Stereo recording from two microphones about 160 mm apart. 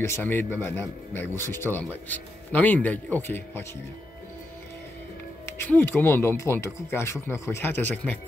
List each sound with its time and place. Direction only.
0.0 s speech: 15° left (ahead or behind)
5.6 s speech: 10° left (ahead or behind)